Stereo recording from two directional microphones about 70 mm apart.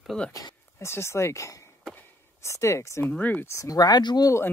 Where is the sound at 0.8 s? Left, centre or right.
Left.